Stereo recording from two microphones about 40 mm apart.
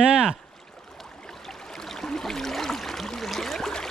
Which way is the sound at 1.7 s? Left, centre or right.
Centre.